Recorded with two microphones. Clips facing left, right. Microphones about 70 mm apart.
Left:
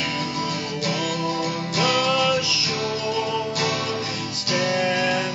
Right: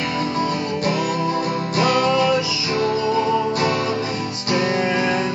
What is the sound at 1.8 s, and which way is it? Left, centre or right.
Music, right.